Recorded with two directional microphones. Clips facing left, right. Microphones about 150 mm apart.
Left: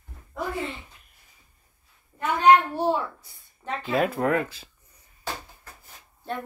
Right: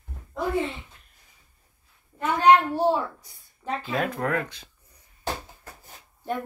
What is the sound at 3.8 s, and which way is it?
Speech, 5° left (ahead or behind).